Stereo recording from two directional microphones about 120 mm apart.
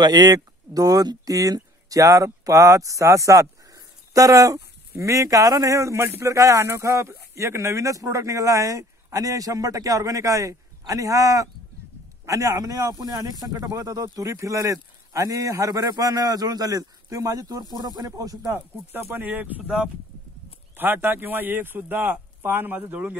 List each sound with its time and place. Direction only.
0.0 s speech: 35° right (ahead or behind)
18.5 s a man's voice: 20° right (ahead or behind)